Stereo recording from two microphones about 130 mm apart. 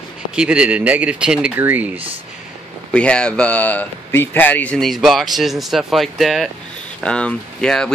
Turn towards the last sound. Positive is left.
turn(degrees=5)  # may be behind; listen again after turning